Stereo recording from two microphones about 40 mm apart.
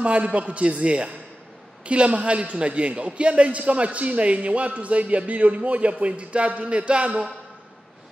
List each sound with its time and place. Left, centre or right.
0.0 s a man's voice: right